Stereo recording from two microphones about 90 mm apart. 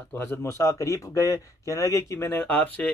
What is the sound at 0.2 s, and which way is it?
A man's voice, 30° left (ahead or behind).